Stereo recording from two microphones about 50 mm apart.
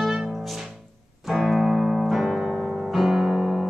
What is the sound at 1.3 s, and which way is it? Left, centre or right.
Piano, centre.